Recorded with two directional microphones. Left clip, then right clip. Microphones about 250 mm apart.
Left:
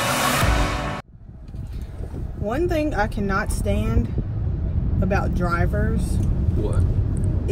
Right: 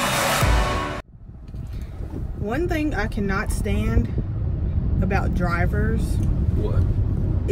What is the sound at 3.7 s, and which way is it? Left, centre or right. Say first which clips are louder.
Speech: even; centre.